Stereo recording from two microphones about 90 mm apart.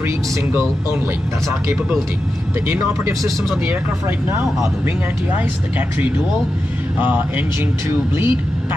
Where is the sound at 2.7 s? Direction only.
30° right (ahead or behind).